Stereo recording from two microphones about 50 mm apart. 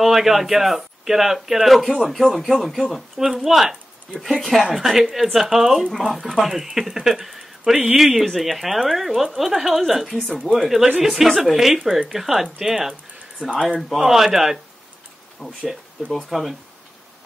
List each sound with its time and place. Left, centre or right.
0.0 s speech: centre
4.7 s speech: centre
5.9 s speech: centre
6.4 s speech: centre
10.5 s speech: right
11.0 s speech: centre
13.5 s speech: left
13.7 s speech: centre